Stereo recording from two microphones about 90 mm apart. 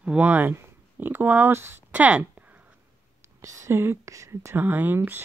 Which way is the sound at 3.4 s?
35° right (ahead or behind).